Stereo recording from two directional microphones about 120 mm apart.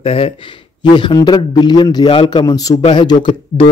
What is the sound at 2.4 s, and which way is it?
A man's voice, 30° left (ahead or behind).